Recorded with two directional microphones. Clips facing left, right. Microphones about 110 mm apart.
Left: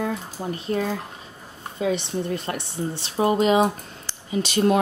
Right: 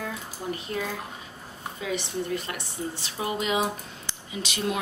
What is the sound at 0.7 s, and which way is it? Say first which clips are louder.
Speech: left 6 dB; 35° left (ahead or behind).